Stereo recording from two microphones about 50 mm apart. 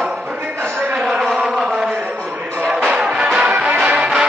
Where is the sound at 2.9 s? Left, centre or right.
Right.